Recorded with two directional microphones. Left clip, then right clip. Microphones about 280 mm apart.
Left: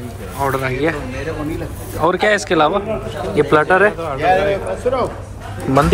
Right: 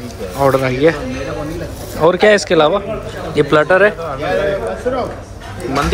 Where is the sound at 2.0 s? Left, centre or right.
Centre.